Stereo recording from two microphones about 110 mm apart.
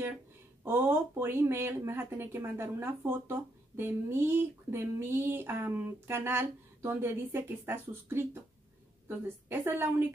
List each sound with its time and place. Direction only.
0.7 s a woman's voice: 20° right (ahead or behind)